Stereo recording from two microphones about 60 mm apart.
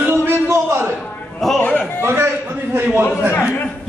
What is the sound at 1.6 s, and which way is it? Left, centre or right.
Speech, left.